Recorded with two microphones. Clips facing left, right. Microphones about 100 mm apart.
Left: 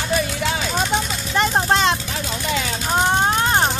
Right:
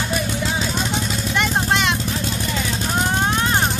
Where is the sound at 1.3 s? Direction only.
35° left (ahead or behind).